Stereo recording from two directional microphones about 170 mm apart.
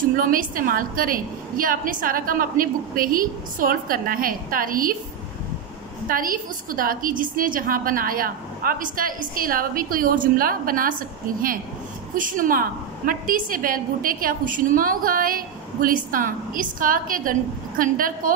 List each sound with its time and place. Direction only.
0.1 s a woman's voice: 55° right (ahead or behind)
6.0 s a woman's voice: 55° right (ahead or behind)